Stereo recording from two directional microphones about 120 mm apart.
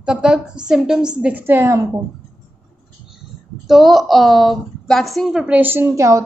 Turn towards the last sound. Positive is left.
turn(degrees=-25)  # may be behind; listen again after turning